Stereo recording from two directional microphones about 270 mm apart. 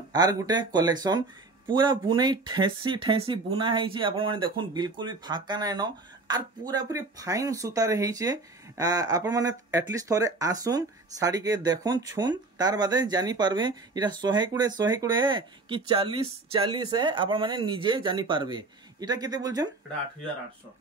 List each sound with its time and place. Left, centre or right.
0.1 s speech: centre